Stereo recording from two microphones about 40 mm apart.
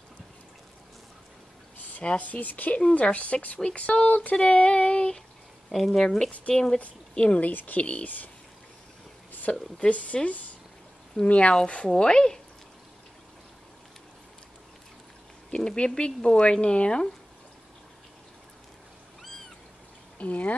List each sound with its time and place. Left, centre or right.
2.0 s speech: left
4.4 s child singing: left
5.7 s speech: centre
6.8 s speech: left
7.4 s speech: left
9.8 s speech: left; by 12.4 s centre
15.5 s speech: left
20.2 s speech: left